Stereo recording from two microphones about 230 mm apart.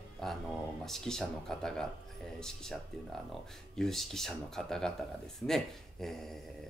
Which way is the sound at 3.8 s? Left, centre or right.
Centre.